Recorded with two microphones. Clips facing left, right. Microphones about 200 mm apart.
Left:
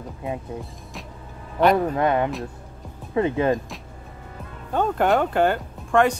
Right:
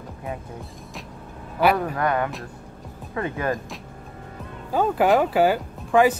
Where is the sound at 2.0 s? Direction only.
25° left (ahead or behind).